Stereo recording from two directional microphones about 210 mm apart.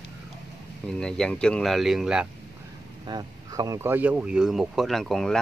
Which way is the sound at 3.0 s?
20° right (ahead or behind).